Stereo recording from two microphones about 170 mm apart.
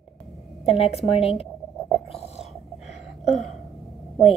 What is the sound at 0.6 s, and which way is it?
Speech, 35° left (ahead or behind).